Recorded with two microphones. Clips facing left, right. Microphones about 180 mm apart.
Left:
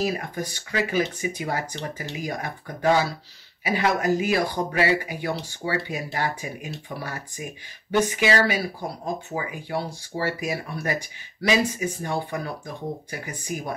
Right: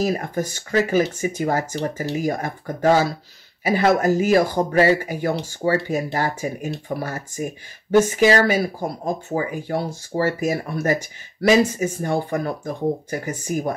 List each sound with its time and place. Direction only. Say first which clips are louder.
0.0 s speech: right 5 dB; 45° right (ahead or behind)